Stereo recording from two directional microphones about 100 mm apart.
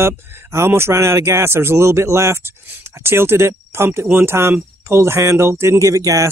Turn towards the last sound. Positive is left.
turn(degrees=-30)  # may be behind; listen again after turning